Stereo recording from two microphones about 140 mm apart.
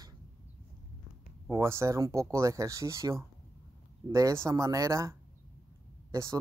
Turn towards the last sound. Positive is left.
turn(degrees=-20)  # may be behind; listen again after turning